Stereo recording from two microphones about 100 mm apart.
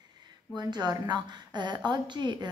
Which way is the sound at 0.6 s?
40° right (ahead or behind).